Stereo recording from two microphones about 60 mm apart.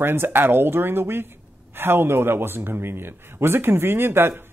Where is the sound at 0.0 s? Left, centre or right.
Right.